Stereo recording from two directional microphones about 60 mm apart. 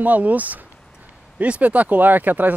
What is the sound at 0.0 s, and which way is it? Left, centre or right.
Speech, right.